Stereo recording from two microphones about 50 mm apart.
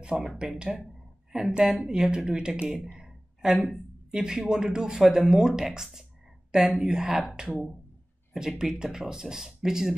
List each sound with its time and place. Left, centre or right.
0.1 s speech: centre